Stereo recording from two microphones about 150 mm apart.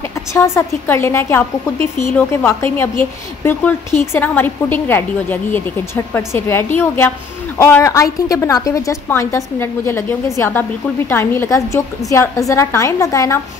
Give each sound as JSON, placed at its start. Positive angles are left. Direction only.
{"t": 0.3, "sound": "a woman's voice", "side_deg": 15}